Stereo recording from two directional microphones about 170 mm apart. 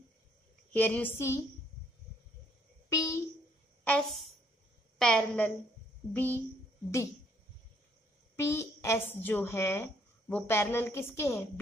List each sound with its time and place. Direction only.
0.7 s a woman's voice: 10° left (ahead or behind)
2.9 s a sound: 20° left (ahead or behind)
3.8 s a woman's voice: 5° left (ahead or behind)
8.4 s a woman's voice: 15° left (ahead or behind)